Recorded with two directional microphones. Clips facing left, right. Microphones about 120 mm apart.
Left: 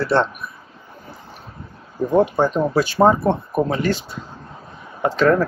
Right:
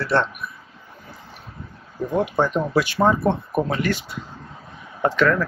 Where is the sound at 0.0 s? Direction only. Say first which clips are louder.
Left 3 dB; 30° left (ahead or behind).